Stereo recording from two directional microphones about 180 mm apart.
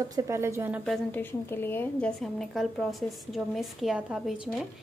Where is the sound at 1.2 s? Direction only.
10° left (ahead or behind).